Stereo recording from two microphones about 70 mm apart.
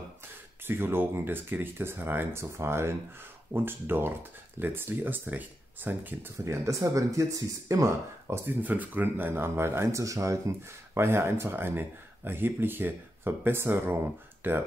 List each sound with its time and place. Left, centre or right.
0.7 s speech: right
6.3 s speech: right
8.5 s speech: right
11.0 s speech: right